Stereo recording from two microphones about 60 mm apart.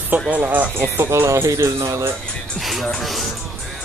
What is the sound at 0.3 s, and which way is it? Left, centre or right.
Speech, right.